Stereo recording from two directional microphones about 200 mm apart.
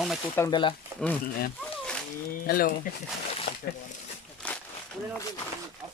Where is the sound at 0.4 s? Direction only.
20° left (ahead or behind).